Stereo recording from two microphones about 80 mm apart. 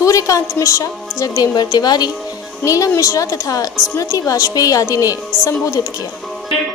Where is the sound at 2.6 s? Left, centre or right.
Left.